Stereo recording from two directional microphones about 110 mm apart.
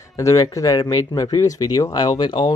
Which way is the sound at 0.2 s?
30° left (ahead or behind).